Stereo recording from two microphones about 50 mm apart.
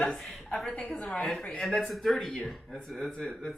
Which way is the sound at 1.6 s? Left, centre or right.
Centre.